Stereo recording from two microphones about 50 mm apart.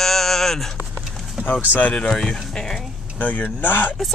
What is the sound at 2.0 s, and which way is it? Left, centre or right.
Speech, centre.